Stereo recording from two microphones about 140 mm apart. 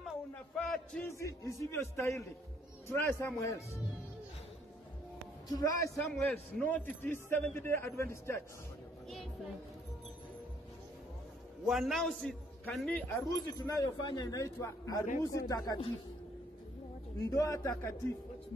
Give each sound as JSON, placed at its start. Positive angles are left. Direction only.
{"t": 0.6, "sound": "a sound", "side_deg": 0}
{"t": 1.0, "sound": "a man's voice", "side_deg": 20}
{"t": 5.5, "sound": "speech", "side_deg": 25}
{"t": 6.1, "sound": "a man's voice", "side_deg": 10}
{"t": 9.1, "sound": "music", "side_deg": 0}
{"t": 11.6, "sound": "a man's voice", "side_deg": 0}
{"t": 13.3, "sound": "speech", "side_deg": 25}
{"t": 17.3, "sound": "speech", "side_deg": 25}